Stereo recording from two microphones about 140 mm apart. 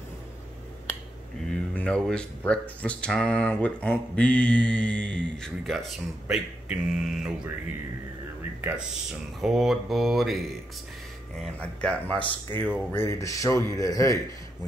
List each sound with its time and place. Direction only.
1.5 s speech: 5° left (ahead or behind)
8.5 s a man's voice: 10° right (ahead or behind); by 14.2 s 25° left (ahead or behind)